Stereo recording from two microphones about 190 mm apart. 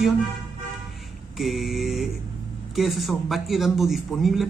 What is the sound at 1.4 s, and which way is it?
A man's voice, centre (ahead or behind).